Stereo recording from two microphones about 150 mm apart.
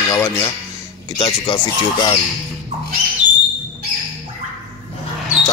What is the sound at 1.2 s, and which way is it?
Speech, 35° left (ahead or behind).